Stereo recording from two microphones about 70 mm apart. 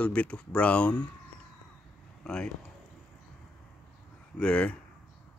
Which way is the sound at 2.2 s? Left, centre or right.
Centre.